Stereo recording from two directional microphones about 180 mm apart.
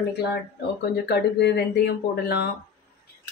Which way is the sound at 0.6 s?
70° left (ahead or behind).